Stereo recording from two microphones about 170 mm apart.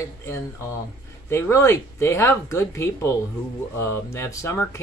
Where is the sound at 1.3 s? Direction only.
15° left (ahead or behind).